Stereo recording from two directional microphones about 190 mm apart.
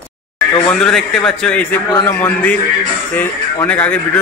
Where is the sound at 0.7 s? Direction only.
5° left (ahead or behind).